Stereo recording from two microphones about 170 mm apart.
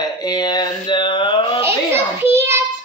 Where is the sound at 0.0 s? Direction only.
25° left (ahead or behind).